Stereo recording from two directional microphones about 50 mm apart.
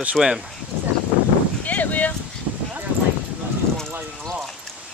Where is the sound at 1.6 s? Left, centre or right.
Left.